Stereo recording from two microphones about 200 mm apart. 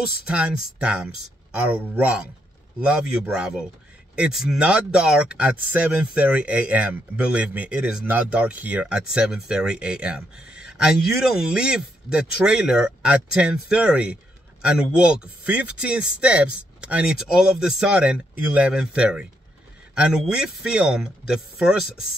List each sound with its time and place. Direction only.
0.3 s speech: 5° right (ahead or behind)